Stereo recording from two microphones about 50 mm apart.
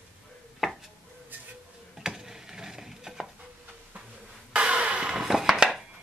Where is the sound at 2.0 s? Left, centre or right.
Centre.